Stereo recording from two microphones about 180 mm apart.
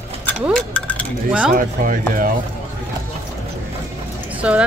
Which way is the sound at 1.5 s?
50° right (ahead or behind).